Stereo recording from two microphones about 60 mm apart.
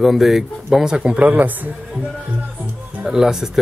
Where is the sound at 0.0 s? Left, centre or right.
Centre.